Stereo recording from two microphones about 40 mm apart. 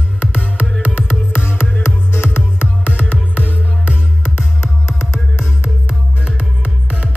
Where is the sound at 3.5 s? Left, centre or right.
Right.